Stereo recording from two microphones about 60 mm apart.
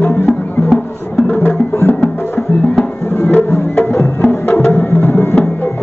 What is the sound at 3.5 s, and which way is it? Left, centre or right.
Music, left.